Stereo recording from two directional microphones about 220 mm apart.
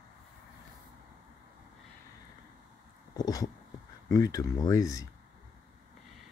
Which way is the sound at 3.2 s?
15° left (ahead or behind).